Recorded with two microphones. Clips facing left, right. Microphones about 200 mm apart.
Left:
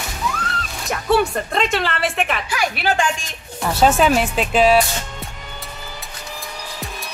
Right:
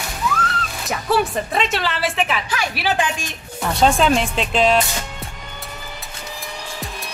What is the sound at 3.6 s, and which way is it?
Speech, 5° left (ahead or behind).